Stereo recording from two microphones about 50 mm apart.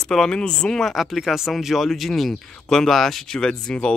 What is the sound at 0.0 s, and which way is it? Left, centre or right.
Speech, centre.